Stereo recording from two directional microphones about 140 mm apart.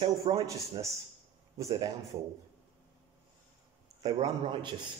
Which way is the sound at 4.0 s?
30° right (ahead or behind).